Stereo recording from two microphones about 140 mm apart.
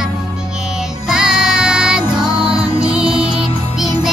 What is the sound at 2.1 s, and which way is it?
Music, 35° right (ahead or behind).